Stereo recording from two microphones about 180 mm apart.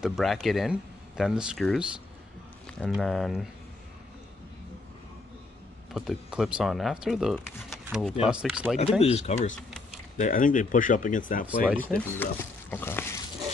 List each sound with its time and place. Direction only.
0.0 s speech: centre (ahead or behind)
2.9 s speech: centre (ahead or behind)
5.9 s speech: centre (ahead or behind)
9.0 s speech: 40° left (ahead or behind)
11.4 s speech: 5° right (ahead or behind)
11.8 s speech: 10° left (ahead or behind)